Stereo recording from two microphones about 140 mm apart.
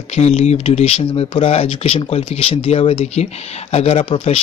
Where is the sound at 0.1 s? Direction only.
50° left (ahead or behind).